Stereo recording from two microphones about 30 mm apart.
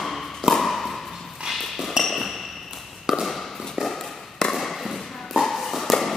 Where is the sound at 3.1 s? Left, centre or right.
Centre.